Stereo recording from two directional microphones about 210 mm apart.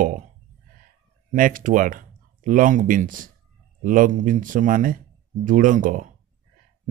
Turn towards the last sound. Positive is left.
turn(degrees=-40)  # may be behind; listen again after turning